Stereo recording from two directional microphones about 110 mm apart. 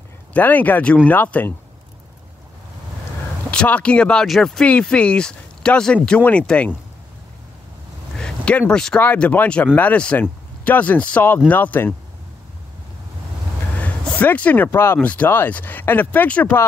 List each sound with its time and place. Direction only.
0.3 s speech: 15° left (ahead or behind)
3.4 s speech: 15° left (ahead or behind)
8.2 s speech: 10° left (ahead or behind)
13.7 s a sound: 15° left (ahead or behind)
14.7 s speech: 20° left (ahead or behind)